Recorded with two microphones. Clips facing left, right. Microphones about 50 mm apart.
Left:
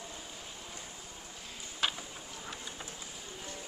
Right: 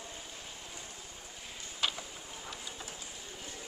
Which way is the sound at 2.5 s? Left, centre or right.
Centre.